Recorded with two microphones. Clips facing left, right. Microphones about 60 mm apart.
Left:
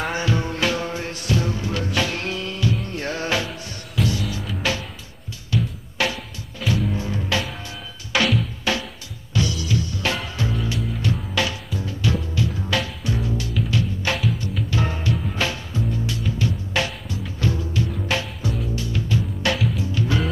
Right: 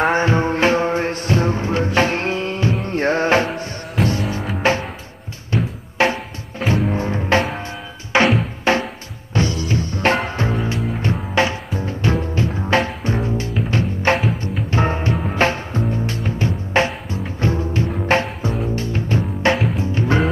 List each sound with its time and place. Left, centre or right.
0.1 s music: right
4.6 s music: right
6.0 s music: right